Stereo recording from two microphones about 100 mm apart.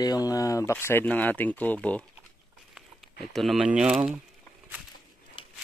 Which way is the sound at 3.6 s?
10° right (ahead or behind).